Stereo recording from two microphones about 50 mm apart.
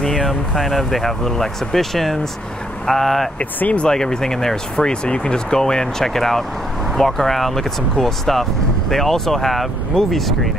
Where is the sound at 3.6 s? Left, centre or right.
Left.